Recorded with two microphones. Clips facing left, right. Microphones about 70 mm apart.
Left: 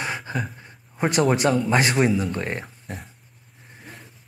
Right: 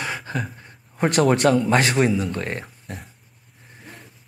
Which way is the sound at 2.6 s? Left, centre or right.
Centre.